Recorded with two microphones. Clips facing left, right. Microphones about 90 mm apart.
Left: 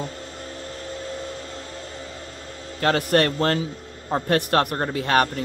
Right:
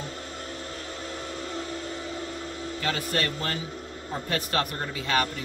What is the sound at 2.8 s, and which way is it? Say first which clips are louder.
A man's voice: left 10 dB; 65° left (ahead or behind).